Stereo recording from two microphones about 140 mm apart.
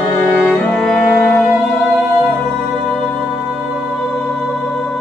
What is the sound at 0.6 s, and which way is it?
Music, 5° left (ahead or behind).